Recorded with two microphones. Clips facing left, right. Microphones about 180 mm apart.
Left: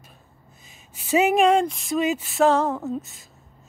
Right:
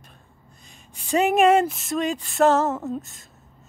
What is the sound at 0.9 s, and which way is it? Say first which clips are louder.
Speech: left 1 dB; 5° left (ahead or behind).